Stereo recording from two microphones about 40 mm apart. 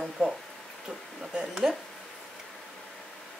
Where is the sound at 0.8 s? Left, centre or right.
Right.